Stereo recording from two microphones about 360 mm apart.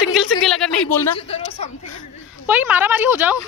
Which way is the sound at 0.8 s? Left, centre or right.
Centre.